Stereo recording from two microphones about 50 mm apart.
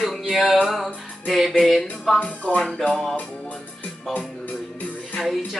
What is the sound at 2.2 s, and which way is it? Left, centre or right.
Music, left.